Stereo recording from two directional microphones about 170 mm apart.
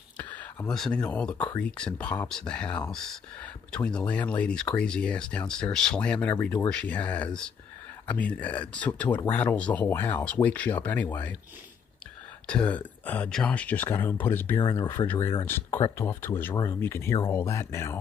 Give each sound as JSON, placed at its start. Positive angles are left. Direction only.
{"t": 0.2, "sound": "speech", "side_deg": 10}
{"t": 12.4, "sound": "speech", "side_deg": 5}